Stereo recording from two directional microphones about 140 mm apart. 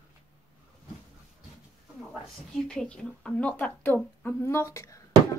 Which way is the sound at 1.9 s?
Centre (ahead or behind).